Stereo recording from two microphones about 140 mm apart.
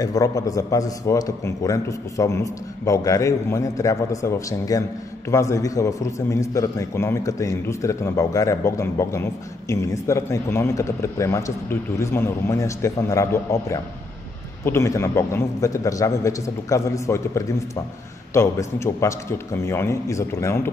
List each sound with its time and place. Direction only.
0.0 s a man's voice: 25° left (ahead or behind)